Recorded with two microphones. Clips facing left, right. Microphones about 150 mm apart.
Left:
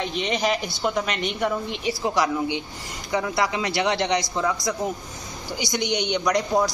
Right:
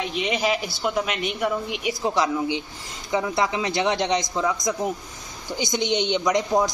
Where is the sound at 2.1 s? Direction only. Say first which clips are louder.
Even; 15° right (ahead or behind).